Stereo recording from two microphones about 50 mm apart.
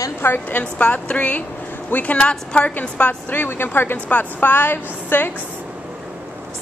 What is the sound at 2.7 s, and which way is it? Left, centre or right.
A woman's voice, left.